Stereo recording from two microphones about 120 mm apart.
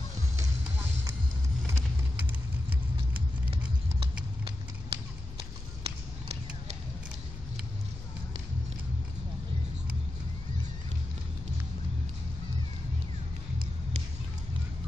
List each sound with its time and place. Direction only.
0.4 s music: 25° right (ahead or behind)
4.0 s a sound: 50° right (ahead or behind)
5.4 s clip-clop: 55° right (ahead or behind)